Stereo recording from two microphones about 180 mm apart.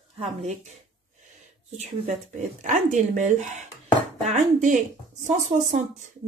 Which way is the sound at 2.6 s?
40° right (ahead or behind).